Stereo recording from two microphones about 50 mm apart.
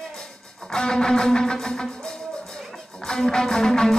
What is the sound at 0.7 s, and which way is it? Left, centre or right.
Music, centre.